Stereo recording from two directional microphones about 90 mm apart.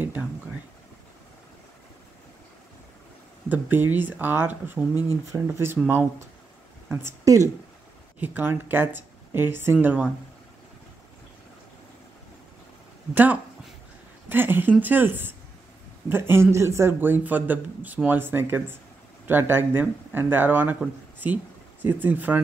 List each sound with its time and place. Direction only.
3.4 s speech: 20° right (ahead or behind)
8.2 s speech: 20° right (ahead or behind)
13.1 s speech: 20° right (ahead or behind)
21.8 s speech: 20° right (ahead or behind)